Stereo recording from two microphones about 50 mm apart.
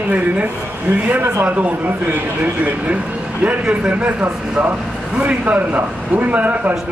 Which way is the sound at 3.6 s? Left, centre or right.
Right.